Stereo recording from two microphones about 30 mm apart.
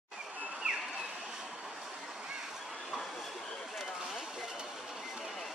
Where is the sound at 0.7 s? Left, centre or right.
Right.